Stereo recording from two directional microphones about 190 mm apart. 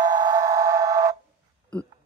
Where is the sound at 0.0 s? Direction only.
20° right (ahead or behind).